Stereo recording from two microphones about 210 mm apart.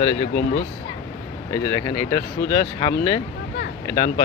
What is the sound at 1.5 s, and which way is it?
Speech, 15° left (ahead or behind).